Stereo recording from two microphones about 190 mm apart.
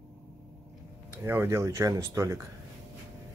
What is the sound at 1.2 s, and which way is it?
Speech, 10° right (ahead or behind).